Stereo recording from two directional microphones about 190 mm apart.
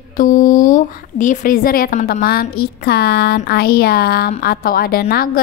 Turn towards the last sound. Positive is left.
turn(degrees=55)  # may be behind; listen again after turning